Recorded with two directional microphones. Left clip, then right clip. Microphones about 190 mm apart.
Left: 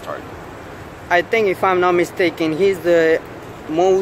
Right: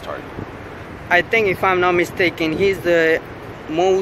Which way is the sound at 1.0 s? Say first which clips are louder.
Even; 20° left (ahead or behind).